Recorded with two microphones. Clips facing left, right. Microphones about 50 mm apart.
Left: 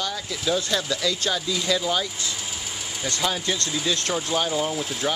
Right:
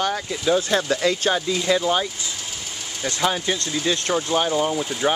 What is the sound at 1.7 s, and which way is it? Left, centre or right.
Speech, right.